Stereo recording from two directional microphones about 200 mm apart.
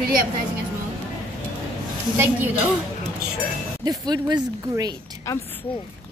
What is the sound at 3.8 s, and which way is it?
Speech, 20° right (ahead or behind).